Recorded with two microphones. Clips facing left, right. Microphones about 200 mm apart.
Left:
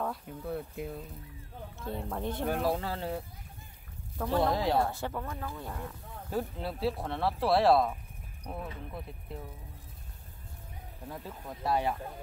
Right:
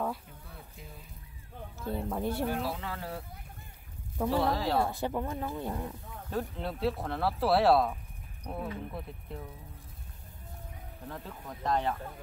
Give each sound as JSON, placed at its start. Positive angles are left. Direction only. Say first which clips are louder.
{"t": 0.4, "sound": "speech", "louder": "left 14 dB", "side_deg": 55}
{"t": 1.8, "sound": "speech", "louder": "right 3 dB", "side_deg": 0}
{"t": 2.5, "sound": "speech", "louder": "left 4 dB", "side_deg": 45}
{"t": 2.9, "sound": "speech", "louder": "left 4 dB", "side_deg": 25}
{"t": 4.4, "sound": "speech", "louder": "left 3 dB", "side_deg": 15}
{"t": 4.8, "sound": "speech", "louder": "right 3 dB", "side_deg": -15}
{"t": 6.3, "sound": "speech", "louder": "even", "side_deg": 5}
{"t": 11.1, "sound": "speech", "louder": "left 1 dB", "side_deg": 10}